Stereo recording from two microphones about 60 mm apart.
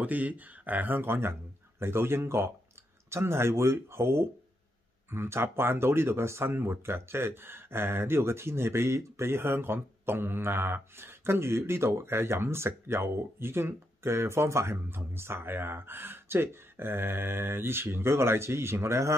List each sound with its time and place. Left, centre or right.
0.0 s speech: right